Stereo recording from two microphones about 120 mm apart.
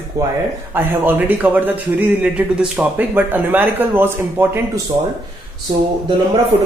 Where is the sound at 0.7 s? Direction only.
15° right (ahead or behind).